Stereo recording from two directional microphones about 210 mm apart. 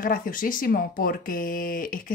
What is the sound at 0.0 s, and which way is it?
Speech, 40° left (ahead or behind).